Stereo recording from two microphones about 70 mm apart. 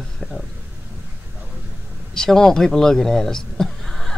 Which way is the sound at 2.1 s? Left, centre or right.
Centre.